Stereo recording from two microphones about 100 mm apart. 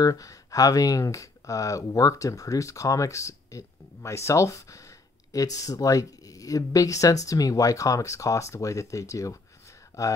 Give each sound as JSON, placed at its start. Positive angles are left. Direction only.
{"t": 0.0, "sound": "speech", "side_deg": 35}